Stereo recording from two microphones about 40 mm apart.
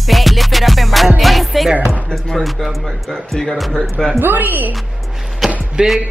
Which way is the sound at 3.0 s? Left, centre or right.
Centre.